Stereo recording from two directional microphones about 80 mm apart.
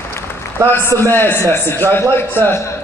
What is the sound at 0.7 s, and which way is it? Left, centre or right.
A man's voice, left.